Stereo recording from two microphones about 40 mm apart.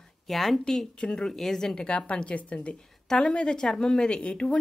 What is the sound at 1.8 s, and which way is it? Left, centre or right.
Speech, left.